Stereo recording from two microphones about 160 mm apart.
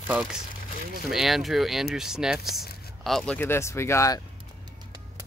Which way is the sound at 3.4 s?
15° left (ahead or behind).